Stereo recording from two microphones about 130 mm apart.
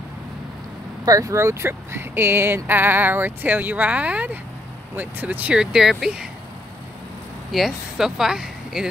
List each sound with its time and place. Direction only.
1.0 s speech: 25° right (ahead or behind); by 6.2 s 5° right (ahead or behind)
7.5 s speech: centre (ahead or behind)